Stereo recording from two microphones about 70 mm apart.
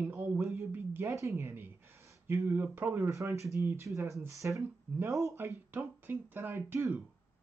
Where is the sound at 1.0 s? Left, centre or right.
Right.